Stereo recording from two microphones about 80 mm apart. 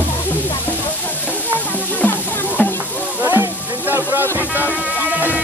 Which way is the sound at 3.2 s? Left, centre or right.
Right.